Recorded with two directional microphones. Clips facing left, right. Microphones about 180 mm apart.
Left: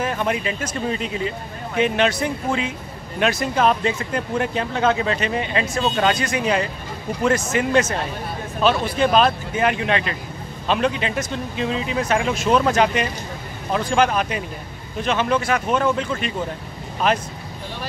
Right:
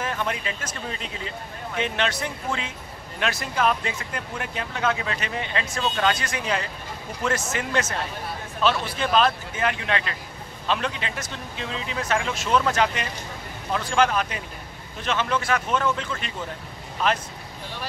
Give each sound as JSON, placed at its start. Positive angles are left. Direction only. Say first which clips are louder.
{"t": 0.0, "sound": "speech", "louder": "left 6 dB", "side_deg": 15}